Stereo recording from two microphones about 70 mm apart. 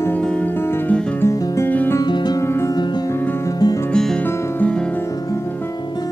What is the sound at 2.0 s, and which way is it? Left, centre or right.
Music, left.